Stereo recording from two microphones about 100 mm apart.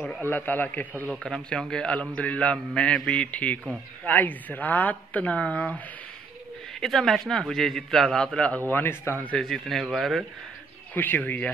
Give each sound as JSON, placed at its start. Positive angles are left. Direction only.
{"t": 0.3, "sound": "a man's voice", "side_deg": 20}
{"t": 1.2, "sound": "a man's voice", "side_deg": 5}
{"t": 9.4, "sound": "a man's voice", "side_deg": 0}
{"t": 11.0, "sound": "a man's voice", "side_deg": 15}